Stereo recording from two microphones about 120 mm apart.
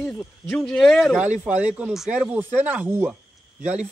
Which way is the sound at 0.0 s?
Centre (ahead or behind).